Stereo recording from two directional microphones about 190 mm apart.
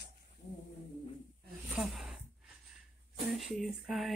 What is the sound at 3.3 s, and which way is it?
Speech, centre (ahead or behind).